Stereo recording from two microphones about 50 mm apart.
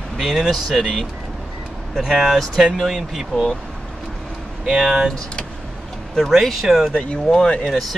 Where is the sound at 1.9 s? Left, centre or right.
Centre.